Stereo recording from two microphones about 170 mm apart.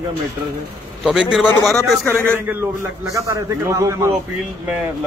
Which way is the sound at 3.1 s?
20° right (ahead or behind).